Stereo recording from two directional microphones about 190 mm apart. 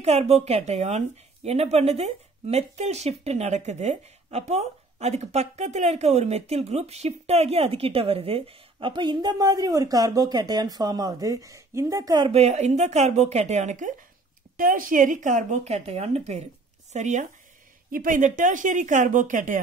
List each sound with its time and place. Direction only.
0.0 s speech: 35° right (ahead or behind)
12.3 s speech: 35° right (ahead or behind)